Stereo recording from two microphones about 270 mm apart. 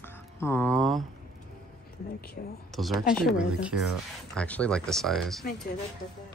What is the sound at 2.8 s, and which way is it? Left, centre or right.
Speech, centre.